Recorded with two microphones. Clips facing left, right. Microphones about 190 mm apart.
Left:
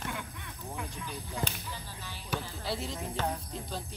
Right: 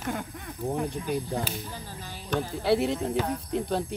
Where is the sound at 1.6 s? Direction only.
45° right (ahead or behind).